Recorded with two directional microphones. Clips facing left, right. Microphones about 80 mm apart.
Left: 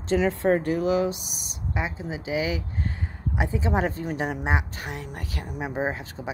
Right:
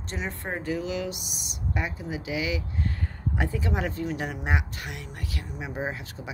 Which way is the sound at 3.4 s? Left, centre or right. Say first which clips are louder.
Left 4 dB; left.